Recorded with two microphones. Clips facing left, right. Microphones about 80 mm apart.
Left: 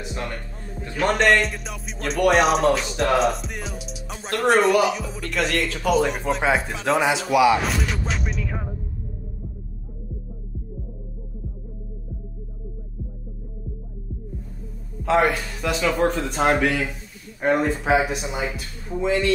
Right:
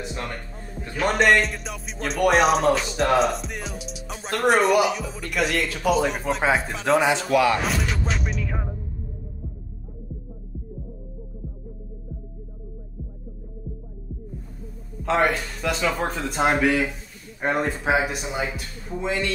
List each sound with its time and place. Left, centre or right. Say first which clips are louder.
0.7 s music: left 1 dB; centre
15.0 s music: left 2 dB; centre